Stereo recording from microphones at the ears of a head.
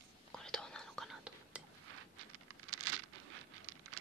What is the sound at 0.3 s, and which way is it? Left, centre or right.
Whispering, centre.